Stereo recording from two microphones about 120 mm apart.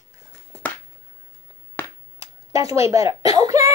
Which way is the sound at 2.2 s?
55° left (ahead or behind).